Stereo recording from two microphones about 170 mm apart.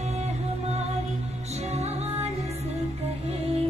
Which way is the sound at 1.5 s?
40° right (ahead or behind).